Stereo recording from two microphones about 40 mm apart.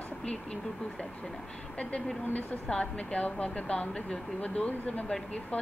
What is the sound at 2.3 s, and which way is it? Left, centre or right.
Speech, left.